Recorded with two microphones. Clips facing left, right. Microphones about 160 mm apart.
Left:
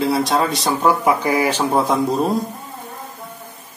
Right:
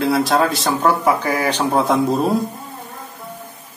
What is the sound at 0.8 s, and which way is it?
A man's voice, 10° left (ahead or behind).